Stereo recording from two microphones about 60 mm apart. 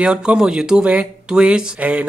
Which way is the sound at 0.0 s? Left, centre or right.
Centre.